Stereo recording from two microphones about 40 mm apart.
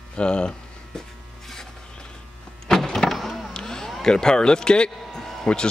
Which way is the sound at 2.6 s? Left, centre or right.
Centre.